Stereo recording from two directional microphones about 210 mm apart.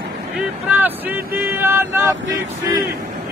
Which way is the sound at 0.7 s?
10° right (ahead or behind).